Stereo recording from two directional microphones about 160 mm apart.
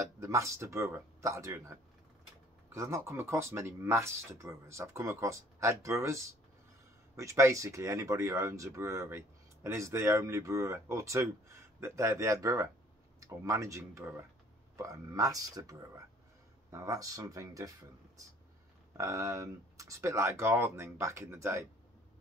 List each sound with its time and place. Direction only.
0.0 s speech: 20° right (ahead or behind)